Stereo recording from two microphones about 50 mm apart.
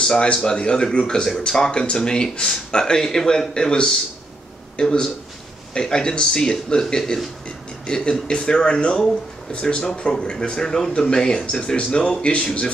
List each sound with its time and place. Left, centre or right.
0.0 s speech: centre